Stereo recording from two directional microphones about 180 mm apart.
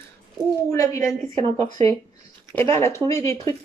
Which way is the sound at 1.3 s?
35° right (ahead or behind).